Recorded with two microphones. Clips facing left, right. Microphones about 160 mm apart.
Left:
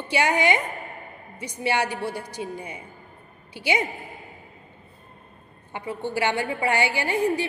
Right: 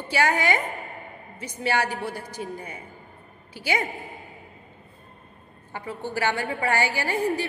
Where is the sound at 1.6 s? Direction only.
20° left (ahead or behind).